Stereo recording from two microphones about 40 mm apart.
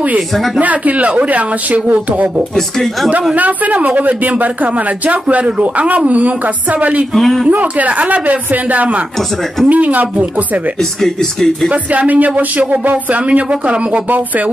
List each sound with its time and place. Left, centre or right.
0.6 s speech: right
2.5 s speech: centre
3.3 s speech: right
7.2 s speech: centre
7.4 s speech: right
10.8 s speech: centre
11.7 s speech: right
14.0 s speech: right